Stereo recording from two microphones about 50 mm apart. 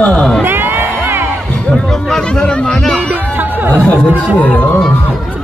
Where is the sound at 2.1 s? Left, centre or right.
Centre.